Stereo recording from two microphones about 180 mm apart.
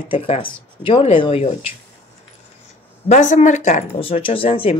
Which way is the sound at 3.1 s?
45° left (ahead or behind).